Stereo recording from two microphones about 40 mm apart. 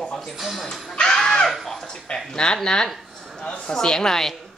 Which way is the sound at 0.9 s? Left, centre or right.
Centre.